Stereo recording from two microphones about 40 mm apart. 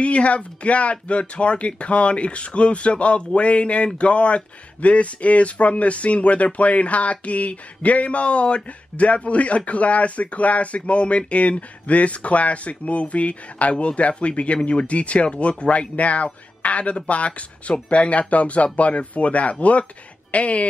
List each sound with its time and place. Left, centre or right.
0.0 s speech: left